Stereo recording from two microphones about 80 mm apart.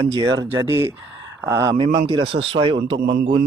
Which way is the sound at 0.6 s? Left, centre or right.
Right.